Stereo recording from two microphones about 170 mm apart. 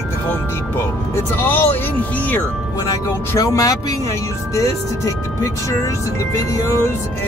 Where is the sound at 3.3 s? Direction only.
20° left (ahead or behind).